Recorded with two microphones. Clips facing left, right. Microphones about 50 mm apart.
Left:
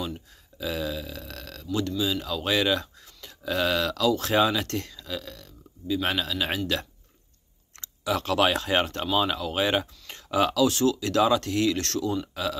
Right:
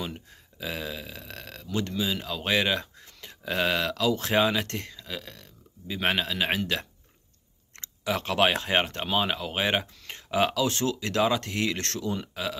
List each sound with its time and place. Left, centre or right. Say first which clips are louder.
0.0 s speech: left 2 dB; right
7.8 s speech: left 2 dB; right